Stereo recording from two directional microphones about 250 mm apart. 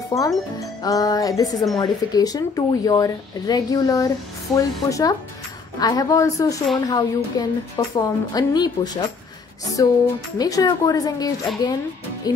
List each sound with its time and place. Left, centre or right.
0.1 s speech: centre